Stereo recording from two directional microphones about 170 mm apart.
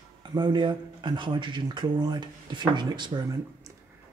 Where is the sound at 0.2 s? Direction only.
25° right (ahead or behind).